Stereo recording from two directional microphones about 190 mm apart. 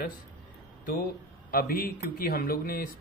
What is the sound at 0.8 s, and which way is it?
Speech, 50° left (ahead or behind).